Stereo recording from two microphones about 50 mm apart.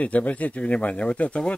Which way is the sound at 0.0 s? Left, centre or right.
Left.